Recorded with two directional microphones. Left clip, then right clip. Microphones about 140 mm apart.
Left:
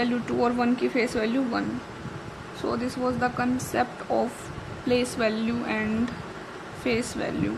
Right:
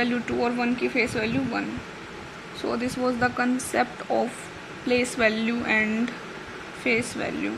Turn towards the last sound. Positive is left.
turn(degrees=15)  # may be behind; listen again after turning